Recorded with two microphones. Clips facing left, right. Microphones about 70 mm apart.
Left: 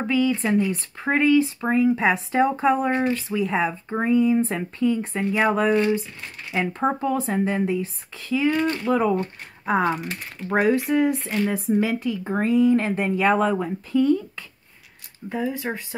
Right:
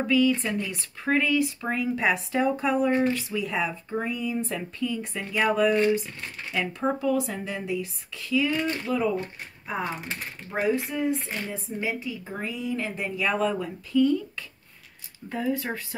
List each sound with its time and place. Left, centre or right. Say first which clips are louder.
0.0 s speech: left 1 dB; left
9.7 s speech: left 9 dB; left
10.9 s speech: left 7 dB; left
15.2 s speech: left 2 dB; centre